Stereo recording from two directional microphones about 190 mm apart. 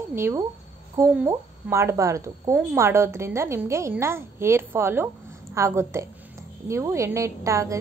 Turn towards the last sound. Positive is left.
turn(degrees=-15)  # may be behind; listen again after turning